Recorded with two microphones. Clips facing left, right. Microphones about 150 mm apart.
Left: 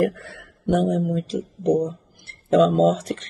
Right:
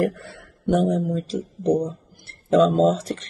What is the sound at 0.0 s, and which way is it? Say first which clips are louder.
Speech: left 1 dB; 30° right (ahead or behind).